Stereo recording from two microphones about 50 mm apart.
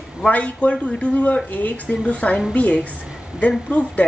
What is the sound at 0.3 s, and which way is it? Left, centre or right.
A woman's voice, left.